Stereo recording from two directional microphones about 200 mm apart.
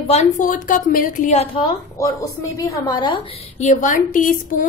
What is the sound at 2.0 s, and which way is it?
A woman's voice, 15° left (ahead or behind).